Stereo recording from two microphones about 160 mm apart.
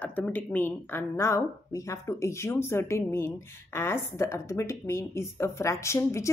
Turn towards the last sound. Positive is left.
turn(degrees=15)  # may be behind; listen again after turning